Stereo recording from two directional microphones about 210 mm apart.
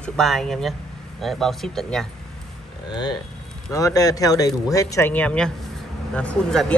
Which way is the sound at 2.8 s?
20° left (ahead or behind).